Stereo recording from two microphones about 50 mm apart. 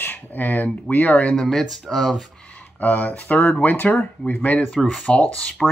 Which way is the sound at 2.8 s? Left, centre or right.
Left.